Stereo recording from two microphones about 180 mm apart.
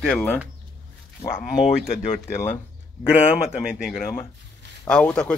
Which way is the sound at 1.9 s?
35° left (ahead or behind).